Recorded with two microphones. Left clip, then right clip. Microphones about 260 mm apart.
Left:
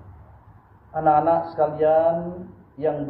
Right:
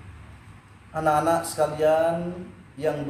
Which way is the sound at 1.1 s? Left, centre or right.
Right.